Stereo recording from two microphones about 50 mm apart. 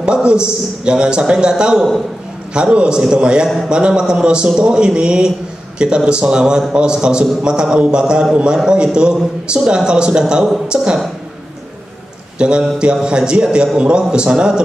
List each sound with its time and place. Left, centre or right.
0.0 s a man's voice: centre
12.4 s a man's voice: centre